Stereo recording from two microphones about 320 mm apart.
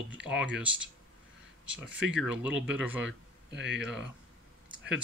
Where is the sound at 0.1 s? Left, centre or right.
Centre.